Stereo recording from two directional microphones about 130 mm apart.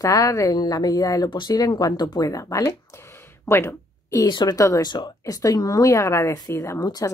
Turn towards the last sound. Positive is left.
turn(degrees=30)  # may be behind; listen again after turning